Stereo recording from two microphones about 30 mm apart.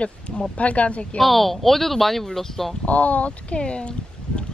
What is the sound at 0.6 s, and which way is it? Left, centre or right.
Speech, left.